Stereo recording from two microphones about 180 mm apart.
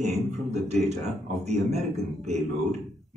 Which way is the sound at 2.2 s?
40° right (ahead or behind).